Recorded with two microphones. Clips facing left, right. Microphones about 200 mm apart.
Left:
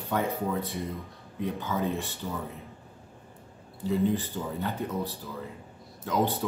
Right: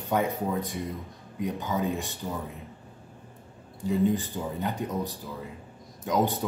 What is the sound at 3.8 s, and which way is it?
Speech, 15° right (ahead or behind).